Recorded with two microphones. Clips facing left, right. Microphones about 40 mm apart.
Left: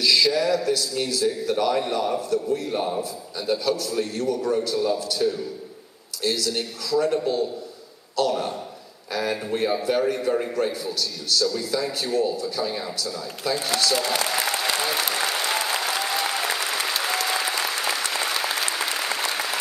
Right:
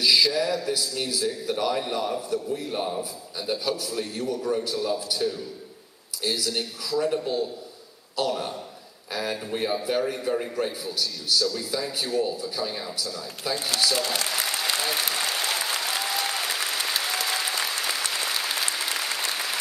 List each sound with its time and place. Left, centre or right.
0.0 s a sound: centre
0.3 s a man's voice: centre
6.2 s a man's voice: centre
13.9 s speech: left
14.8 s applause: centre